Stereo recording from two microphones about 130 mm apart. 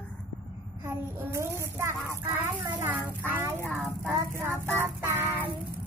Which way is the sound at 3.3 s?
20° right (ahead or behind).